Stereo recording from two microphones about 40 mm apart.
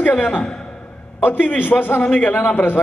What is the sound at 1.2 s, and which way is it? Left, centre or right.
Speech, left.